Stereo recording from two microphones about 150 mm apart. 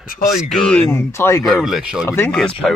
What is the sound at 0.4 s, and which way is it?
Speech, 5° left (ahead or behind).